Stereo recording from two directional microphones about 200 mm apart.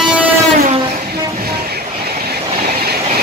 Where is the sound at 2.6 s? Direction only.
50° right (ahead or behind).